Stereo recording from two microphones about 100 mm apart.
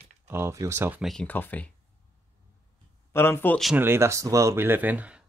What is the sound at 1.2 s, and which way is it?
Speech, 15° left (ahead or behind).